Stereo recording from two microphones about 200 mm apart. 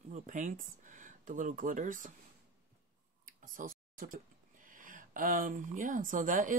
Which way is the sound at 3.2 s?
40° right (ahead or behind).